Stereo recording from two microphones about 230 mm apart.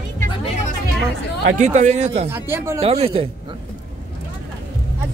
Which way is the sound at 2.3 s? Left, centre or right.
Centre.